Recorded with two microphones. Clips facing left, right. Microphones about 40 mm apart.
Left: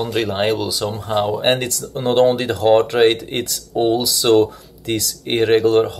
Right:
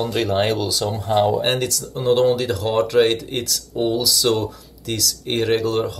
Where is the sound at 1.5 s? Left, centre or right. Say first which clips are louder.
Left 1 dB; left.